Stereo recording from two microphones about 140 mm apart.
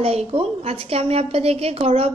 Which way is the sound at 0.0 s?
45° right (ahead or behind).